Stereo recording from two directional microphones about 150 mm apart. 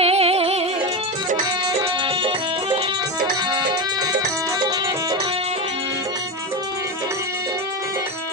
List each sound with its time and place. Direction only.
0.0 s music: 45° right (ahead or behind)
1.8 s music: 35° right (ahead or behind)